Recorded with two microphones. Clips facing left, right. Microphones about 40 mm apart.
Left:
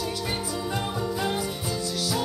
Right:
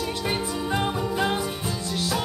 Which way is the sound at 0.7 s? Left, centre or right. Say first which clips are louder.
Right 5 dB; right.